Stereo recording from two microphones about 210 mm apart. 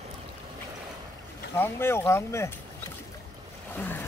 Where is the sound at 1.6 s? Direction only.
10° left (ahead or behind).